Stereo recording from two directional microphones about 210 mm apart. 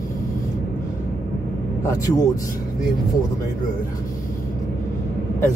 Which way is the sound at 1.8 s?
15° left (ahead or behind).